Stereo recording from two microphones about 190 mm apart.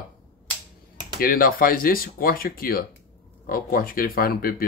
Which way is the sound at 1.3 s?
50° left (ahead or behind).